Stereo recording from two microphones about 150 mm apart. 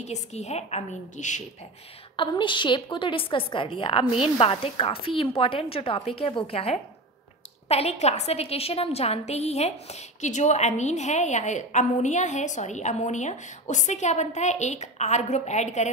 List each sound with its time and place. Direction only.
0.0 s a woman's voice: 50° left (ahead or behind)
2.1 s a woman's voice: 35° left (ahead or behind); by 15.9 s 50° left (ahead or behind)